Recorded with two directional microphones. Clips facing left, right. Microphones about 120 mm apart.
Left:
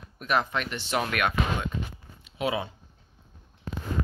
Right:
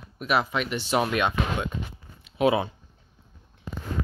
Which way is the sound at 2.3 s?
55° right (ahead or behind).